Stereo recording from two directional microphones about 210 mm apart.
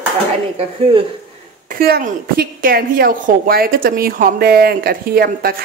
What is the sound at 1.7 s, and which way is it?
A woman's voice, 45° right (ahead or behind).